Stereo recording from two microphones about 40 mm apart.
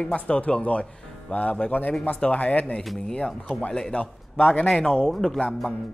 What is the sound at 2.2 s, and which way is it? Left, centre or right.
A man's voice, left.